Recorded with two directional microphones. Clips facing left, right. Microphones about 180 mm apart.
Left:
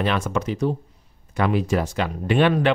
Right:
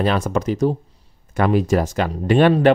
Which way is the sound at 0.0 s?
40° right (ahead or behind).